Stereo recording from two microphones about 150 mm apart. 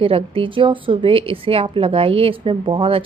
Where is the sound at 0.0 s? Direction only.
35° right (ahead or behind).